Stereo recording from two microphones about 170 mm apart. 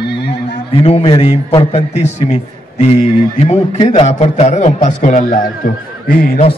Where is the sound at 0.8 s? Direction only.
35° left (ahead or behind).